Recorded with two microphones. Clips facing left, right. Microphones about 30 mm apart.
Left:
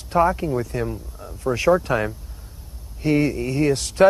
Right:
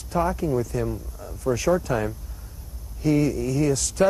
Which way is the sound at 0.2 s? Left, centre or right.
Left.